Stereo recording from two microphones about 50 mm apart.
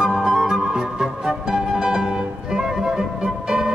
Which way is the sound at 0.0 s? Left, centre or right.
Centre.